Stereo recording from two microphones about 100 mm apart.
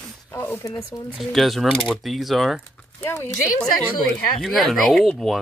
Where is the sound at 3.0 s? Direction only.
25° left (ahead or behind).